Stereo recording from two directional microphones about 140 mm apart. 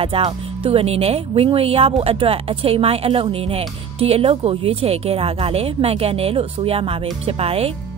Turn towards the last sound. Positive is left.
turn(degrees=-45)  # may be behind; listen again after turning